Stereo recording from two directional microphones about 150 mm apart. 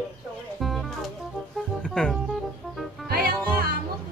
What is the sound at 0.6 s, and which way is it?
Music, centre (ahead or behind).